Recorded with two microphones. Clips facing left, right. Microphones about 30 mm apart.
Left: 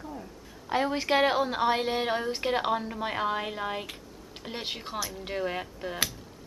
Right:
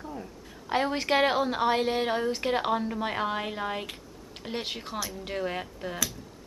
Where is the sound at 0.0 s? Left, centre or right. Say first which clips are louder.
Right 1 dB; centre.